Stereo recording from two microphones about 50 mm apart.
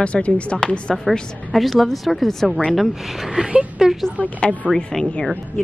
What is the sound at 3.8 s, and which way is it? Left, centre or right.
Speech, centre.